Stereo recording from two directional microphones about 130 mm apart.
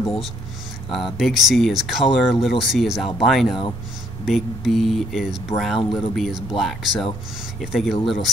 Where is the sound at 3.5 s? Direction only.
35° left (ahead or behind).